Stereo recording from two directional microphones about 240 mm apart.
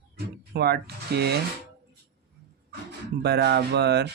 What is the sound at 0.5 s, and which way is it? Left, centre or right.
Speech, right.